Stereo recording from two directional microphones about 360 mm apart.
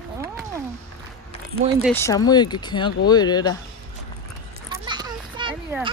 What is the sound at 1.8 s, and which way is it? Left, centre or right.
Speech, centre.